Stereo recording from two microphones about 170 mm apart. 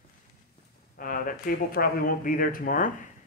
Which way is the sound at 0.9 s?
55° left (ahead or behind).